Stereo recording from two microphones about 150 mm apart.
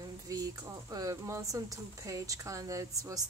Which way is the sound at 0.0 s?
25° right (ahead or behind).